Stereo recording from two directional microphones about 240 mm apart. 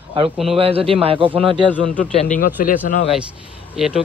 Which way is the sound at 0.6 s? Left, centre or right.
Right.